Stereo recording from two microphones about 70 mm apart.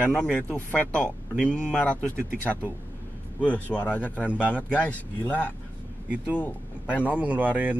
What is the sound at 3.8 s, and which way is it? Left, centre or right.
Speech, left.